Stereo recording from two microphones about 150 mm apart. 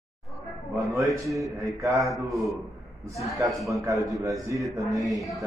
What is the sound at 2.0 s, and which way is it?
A man's voice, centre (ahead or behind).